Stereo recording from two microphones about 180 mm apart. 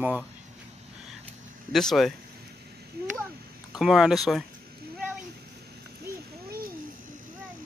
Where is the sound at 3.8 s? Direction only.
Centre (ahead or behind).